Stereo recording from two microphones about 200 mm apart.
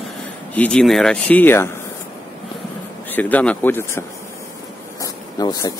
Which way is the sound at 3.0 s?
10° left (ahead or behind).